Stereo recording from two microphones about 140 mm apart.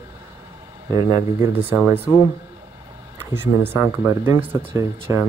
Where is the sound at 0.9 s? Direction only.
20° right (ahead or behind).